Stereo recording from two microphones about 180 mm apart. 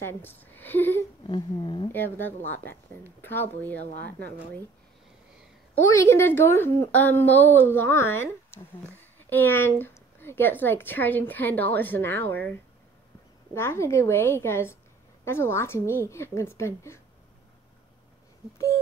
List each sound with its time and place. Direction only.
0.0 s a woman's voice: 10° left (ahead or behind)
1.2 s speech: 25° left (ahead or behind)
1.9 s a woman's voice: 10° left (ahead or behind)
5.9 s a woman's voice: 15° left (ahead or behind)
13.6 s a woman's voice: 15° left (ahead or behind)